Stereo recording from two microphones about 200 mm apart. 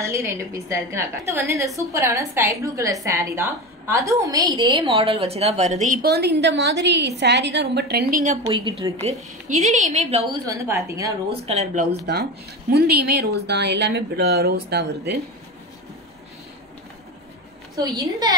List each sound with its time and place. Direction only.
0.0 s a woman's voice: 15° right (ahead or behind); by 5.9 s 35° right (ahead or behind)
6.0 s speech: 55° right (ahead or behind)
8.5 s a woman's voice: 25° right (ahead or behind)
9.0 s a woman's voice: 35° right (ahead or behind)
10.4 s a woman's voice: 15° right (ahead or behind)
11.4 s a woman's voice: 35° right (ahead or behind)
12.7 s speech: 50° right (ahead or behind)
17.7 s a woman's voice: 20° right (ahead or behind)